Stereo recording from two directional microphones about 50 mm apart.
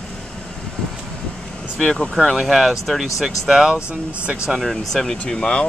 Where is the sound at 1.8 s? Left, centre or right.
Centre.